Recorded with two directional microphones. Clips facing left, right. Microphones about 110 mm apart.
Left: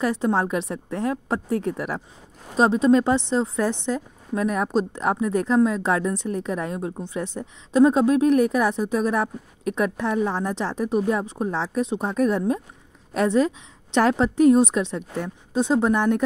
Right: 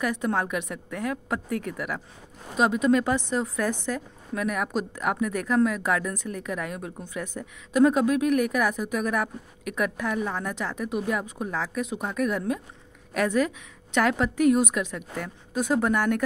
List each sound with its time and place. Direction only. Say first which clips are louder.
0.0 s a woman's voice: left 4 dB; 30° left (ahead or behind)